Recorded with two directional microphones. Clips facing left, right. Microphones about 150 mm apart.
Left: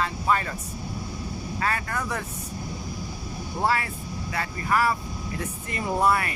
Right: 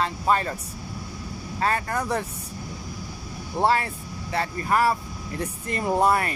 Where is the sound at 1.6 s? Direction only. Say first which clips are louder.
Right 4 dB; 30° right (ahead or behind).